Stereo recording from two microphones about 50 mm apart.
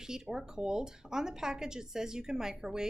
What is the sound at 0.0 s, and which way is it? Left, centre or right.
A woman's voice, centre.